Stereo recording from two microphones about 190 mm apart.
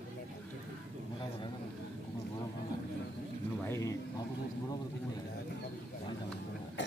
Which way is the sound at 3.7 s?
15° left (ahead or behind).